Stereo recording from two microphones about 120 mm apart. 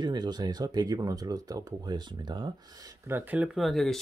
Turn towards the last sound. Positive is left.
turn(degrees=0)  # may be behind; listen again after turning